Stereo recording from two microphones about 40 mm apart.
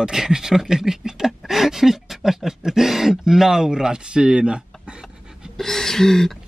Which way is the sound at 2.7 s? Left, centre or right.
Centre.